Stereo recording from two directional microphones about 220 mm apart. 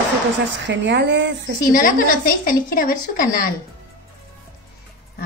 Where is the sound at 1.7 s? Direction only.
40° left (ahead or behind).